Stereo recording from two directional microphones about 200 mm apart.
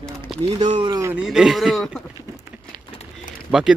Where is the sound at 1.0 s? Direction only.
10° right (ahead or behind).